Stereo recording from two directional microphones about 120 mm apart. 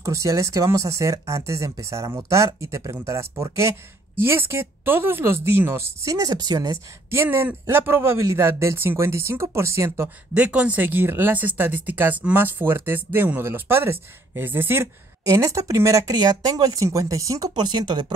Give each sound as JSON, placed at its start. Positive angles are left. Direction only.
{"t": 0.0, "sound": "speech", "side_deg": -25}
{"t": 7.1, "sound": "speech", "side_deg": -20}
{"t": 10.3, "sound": "speech", "side_deg": -10}